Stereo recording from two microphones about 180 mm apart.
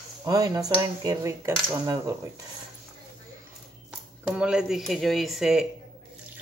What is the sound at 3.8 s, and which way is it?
Speech, 5° right (ahead or behind).